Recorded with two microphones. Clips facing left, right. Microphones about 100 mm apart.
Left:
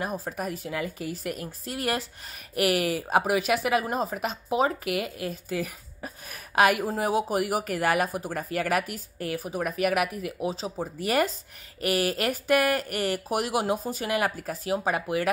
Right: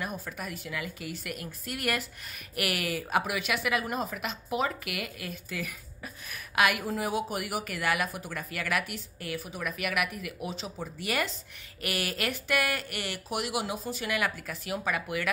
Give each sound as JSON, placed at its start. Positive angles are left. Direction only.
{"t": 0.0, "sound": "speech", "side_deg": 35}